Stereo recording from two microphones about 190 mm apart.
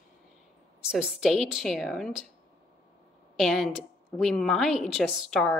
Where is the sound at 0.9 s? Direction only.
5° right (ahead or behind).